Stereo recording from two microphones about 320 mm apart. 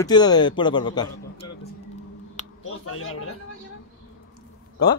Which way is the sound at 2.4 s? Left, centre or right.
Left.